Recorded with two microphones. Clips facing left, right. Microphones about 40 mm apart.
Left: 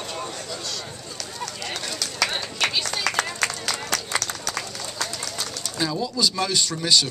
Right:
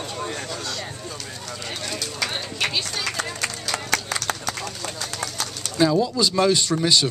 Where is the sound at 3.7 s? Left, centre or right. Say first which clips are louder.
Right 4 dB; right.